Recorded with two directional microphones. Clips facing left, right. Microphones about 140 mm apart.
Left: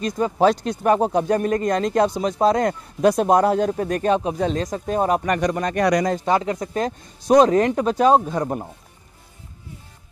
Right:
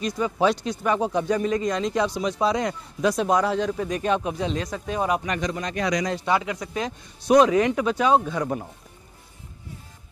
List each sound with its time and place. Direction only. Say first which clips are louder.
0.0 s speech: left 4 dB; 45° left (ahead or behind)
4.1 s speech: left 4 dB; 30° left (ahead or behind)
4.4 s speech: left 5 dB; 45° left (ahead or behind)